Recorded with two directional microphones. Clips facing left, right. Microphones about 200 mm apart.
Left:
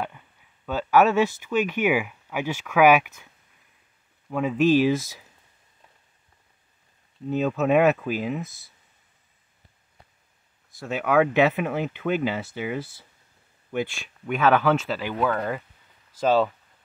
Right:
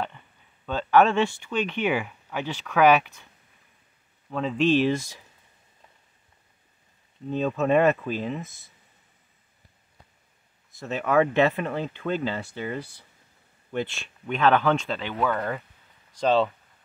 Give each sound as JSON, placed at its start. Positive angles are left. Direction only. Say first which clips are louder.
{"t": 0.7, "sound": "speech", "louder": "even", "side_deg": 5}
{"t": 4.3, "sound": "speech", "louder": "left 2 dB", "side_deg": 10}
{"t": 7.2, "sound": "speech", "louder": "left 1 dB", "side_deg": 5}
{"t": 8.5, "sound": "speech", "louder": "right 1 dB", "side_deg": 35}
{"t": 10.8, "sound": "speech", "louder": "left 1 dB", "side_deg": 0}